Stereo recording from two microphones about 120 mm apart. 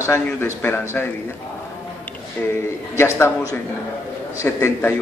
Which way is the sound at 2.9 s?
20° left (ahead or behind).